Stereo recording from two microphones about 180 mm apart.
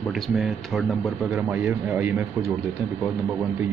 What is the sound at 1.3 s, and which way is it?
Speech, 15° right (ahead or behind).